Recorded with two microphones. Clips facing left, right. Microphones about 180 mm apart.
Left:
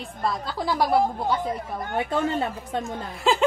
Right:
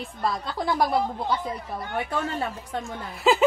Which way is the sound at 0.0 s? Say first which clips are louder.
Even; centre (ahead or behind).